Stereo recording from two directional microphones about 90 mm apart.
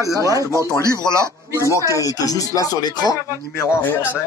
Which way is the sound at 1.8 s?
40° left (ahead or behind).